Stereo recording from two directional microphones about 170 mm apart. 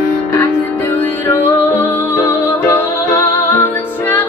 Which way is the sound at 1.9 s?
15° left (ahead or behind).